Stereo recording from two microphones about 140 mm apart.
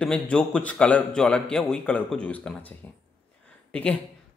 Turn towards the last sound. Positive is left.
turn(degrees=10)  # may be behind; listen again after turning